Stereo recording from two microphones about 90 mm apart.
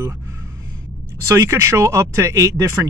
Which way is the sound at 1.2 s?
30° right (ahead or behind).